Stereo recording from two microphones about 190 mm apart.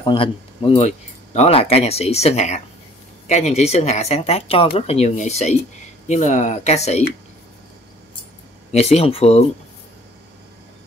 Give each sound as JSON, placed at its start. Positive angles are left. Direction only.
{"t": 0.0, "sound": "speech", "side_deg": 25}
{"t": 8.7, "sound": "speech", "side_deg": 35}